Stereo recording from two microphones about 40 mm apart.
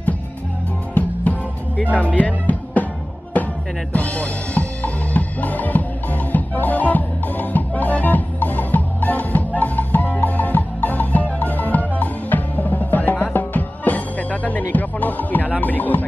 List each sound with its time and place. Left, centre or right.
1.9 s music: left